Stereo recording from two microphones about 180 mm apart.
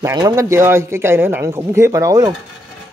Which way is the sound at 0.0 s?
20° right (ahead or behind).